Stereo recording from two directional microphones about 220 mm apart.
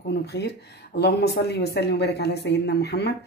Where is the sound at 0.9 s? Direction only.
50° left (ahead or behind).